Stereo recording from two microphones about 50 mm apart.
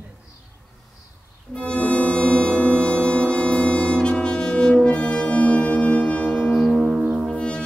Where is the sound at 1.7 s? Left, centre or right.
Left.